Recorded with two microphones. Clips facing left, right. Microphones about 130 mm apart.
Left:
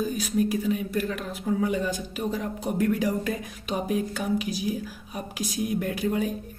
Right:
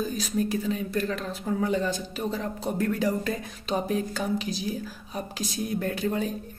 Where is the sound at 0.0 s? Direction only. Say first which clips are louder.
Left 2 dB; 10° left (ahead or behind).